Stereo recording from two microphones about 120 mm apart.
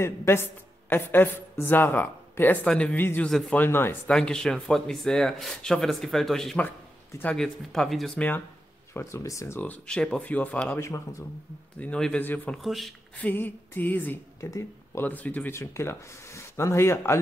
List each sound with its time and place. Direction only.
0.0 s a woman's voice: 20° left (ahead or behind); by 3.5 s 5° left (ahead or behind)
3.5 s a woman's voice: 15° left (ahead or behind)
4.1 s speech: 5° left (ahead or behind)
7.1 s speech: 15° left (ahead or behind)
7.3 s speech: 5° left (ahead or behind)
8.9 s speech: 25° left (ahead or behind)
9.6 s a woman's voice: 10° left (ahead or behind)
10.8 s speech: 25° left (ahead or behind)
11.8 s a woman's voice: 10° left (ahead or behind)
12.6 s speech: centre (ahead or behind)
13.2 s a woman's voice: 15° left (ahead or behind)